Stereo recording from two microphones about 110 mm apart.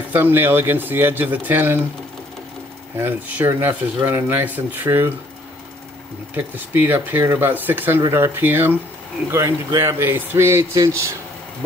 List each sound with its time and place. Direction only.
0.1 s speech: 20° right (ahead or behind)
3.0 s speech: 20° right (ahead or behind)
6.3 s speech: 15° right (ahead or behind)